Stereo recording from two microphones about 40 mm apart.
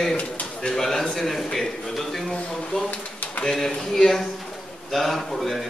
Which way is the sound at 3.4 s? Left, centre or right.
Centre.